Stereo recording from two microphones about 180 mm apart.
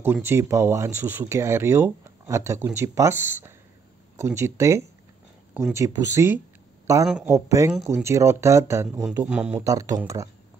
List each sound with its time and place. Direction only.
0.0 s speech: 10° right (ahead or behind)
9.7 s speech: 20° right (ahead or behind)